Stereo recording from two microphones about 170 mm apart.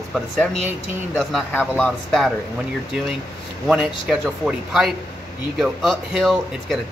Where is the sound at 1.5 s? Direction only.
10° left (ahead or behind).